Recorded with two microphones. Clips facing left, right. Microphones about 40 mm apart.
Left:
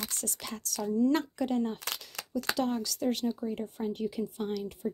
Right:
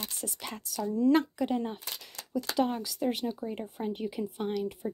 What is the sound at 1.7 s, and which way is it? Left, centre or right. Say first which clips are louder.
Speech: left 3 dB; left.